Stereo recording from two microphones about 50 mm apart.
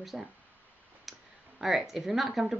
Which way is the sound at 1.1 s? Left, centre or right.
Centre.